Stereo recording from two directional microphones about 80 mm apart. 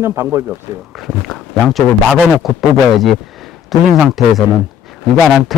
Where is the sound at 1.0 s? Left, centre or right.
Centre.